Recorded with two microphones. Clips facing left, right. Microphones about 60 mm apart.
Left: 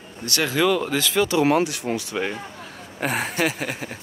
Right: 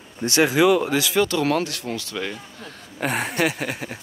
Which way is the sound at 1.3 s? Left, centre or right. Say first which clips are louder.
Left 3 dB; centre.